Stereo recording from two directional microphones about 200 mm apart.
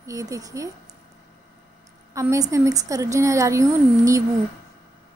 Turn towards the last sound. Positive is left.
turn(degrees=-15)  # may be behind; listen again after turning